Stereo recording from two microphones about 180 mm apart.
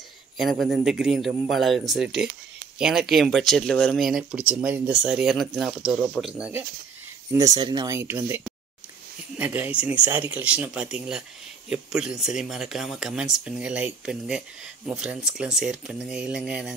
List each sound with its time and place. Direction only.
0.4 s speech: centre (ahead or behind)
7.3 s speech: 20° right (ahead or behind)
9.4 s speech: 10° right (ahead or behind)